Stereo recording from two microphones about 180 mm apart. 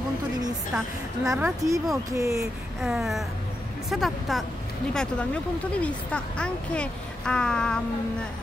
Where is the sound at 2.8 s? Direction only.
Centre (ahead or behind).